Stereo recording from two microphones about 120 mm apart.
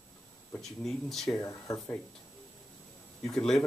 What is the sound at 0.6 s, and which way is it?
Speech, centre (ahead or behind).